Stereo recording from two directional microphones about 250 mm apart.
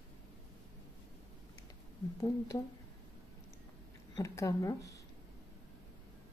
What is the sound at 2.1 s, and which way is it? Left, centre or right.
Speech, centre.